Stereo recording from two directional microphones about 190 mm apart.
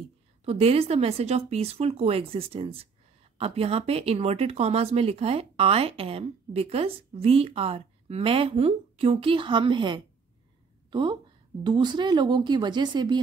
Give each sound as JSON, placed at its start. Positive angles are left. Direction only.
{"t": 0.5, "sound": "speech", "side_deg": -30}